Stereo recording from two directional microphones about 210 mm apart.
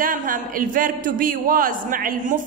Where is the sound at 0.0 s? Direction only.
40° right (ahead or behind).